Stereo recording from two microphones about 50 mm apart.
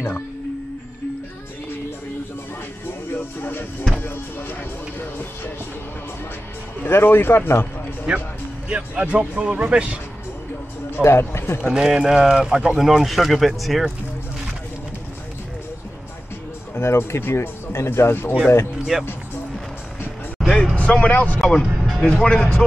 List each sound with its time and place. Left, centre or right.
3.1 s music: left
6.8 s speech: left
8.1 s speech: centre
10.9 s speech: left
11.7 s speech: centre
16.7 s speech: left
18.9 s speech: centre
20.4 s a sound: centre
20.7 s speech: left
21.4 s speech: centre
21.7 s music: centre
22.1 s speech: centre
22.6 s speech: centre